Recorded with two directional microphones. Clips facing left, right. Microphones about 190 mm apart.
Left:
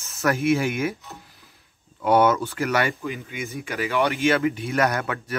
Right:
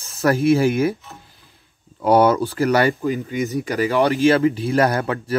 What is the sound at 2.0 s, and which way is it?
Speech, 35° right (ahead or behind).